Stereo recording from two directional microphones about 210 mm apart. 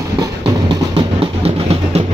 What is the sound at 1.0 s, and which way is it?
Music, 30° right (ahead or behind).